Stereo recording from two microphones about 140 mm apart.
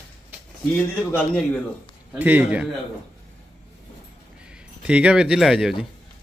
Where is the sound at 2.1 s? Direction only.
10° right (ahead or behind).